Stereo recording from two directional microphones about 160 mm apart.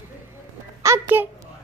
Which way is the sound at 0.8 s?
15° right (ahead or behind).